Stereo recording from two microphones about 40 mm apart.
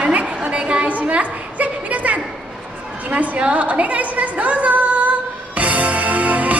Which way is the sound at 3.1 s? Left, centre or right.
Right.